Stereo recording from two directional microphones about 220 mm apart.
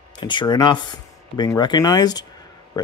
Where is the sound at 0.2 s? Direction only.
20° left (ahead or behind).